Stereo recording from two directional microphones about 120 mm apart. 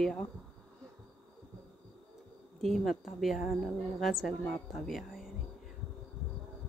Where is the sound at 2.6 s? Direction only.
Centre (ahead or behind).